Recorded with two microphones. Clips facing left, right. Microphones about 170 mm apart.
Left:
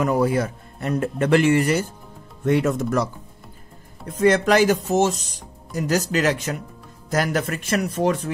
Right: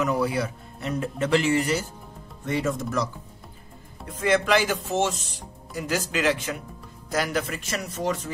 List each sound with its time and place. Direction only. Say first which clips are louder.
0.0 s speech: left 4 dB; 50° left (ahead or behind)
4.1 s speech: left 5 dB; 45° left (ahead or behind)